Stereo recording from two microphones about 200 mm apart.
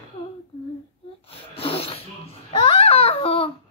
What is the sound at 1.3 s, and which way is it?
Babbling, 30° left (ahead or behind).